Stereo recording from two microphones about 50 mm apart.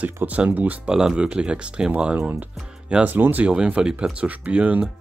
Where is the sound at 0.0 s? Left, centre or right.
Right.